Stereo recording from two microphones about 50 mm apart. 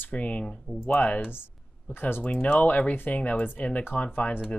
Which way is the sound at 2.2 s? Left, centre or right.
Left.